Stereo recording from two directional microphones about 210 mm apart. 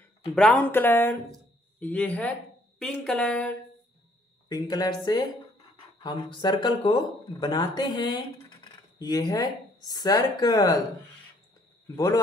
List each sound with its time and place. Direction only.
0.3 s speech: centre (ahead or behind)
4.5 s speech: 20° left (ahead or behind)
11.9 s speech: 15° left (ahead or behind)